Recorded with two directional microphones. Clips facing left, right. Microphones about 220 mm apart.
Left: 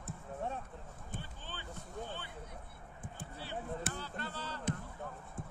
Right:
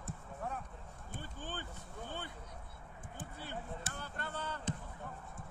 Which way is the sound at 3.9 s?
50° right (ahead or behind).